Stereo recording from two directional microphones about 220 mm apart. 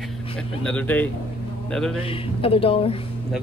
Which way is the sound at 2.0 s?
25° left (ahead or behind).